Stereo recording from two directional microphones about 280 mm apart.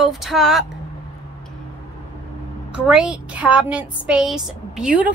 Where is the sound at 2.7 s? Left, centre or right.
Centre.